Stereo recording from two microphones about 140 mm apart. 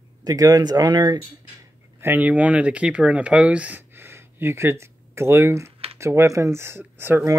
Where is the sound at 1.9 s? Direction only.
15° right (ahead or behind).